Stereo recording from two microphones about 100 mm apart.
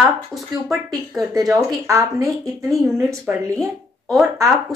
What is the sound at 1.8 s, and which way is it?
Speech, 30° right (ahead or behind).